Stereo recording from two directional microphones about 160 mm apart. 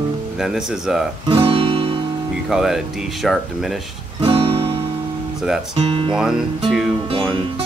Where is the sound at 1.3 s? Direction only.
35° right (ahead or behind).